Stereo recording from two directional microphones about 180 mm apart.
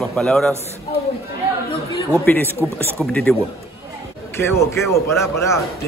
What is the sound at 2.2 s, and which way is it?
A man's voice, 10° left (ahead or behind).